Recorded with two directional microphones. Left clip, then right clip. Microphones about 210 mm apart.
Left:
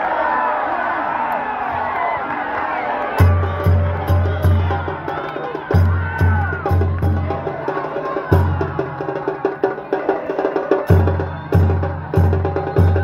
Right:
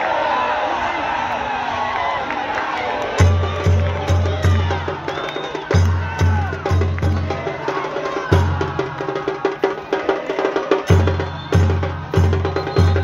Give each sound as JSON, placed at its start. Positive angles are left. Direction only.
{"t": 9.4, "sound": "music", "side_deg": 40}